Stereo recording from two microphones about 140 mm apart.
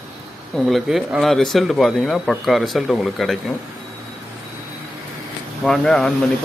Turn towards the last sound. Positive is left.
turn(degrees=5)  # may be behind; listen again after turning